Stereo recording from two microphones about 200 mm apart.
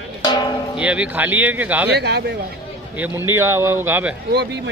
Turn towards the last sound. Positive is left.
turn(degrees=-10)  # may be behind; listen again after turning